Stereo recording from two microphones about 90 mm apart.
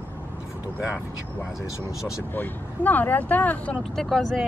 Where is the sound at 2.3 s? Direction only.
20° left (ahead or behind).